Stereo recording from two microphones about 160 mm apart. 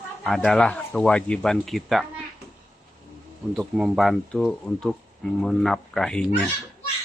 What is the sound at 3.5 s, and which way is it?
Speech, centre (ahead or behind).